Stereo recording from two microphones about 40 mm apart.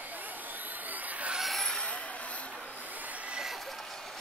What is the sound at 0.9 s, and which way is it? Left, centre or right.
Vehicle, right.